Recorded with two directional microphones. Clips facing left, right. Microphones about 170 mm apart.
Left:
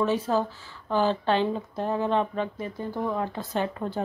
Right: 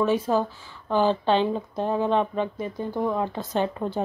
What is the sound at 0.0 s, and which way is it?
Speech, 15° right (ahead or behind).